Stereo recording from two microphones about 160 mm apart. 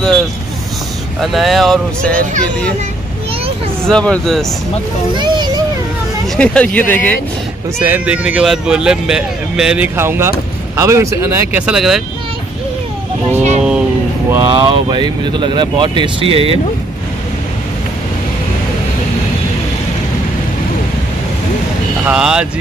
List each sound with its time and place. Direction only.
1.2 s speech: centre (ahead or behind)
3.8 s speech: 5° left (ahead or behind)
5.1 s a child's voice: 30° right (ahead or behind)
6.3 s speech: 5° left (ahead or behind)
7.8 s speech: 10° right (ahead or behind)
9.9 s speech: 15° right (ahead or behind)
13.4 s vehicle: 45° right (ahead or behind)
14.4 s speech: 30° right (ahead or behind)
22.0 s speech: 5° right (ahead or behind)